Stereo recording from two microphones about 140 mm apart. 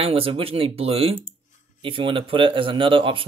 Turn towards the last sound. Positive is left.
turn(degrees=-40)  # may be behind; listen again after turning